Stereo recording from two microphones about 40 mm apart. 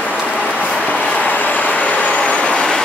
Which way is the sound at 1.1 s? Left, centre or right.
Left.